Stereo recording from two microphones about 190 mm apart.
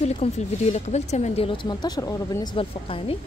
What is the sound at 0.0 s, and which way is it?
Speech, 35° left (ahead or behind).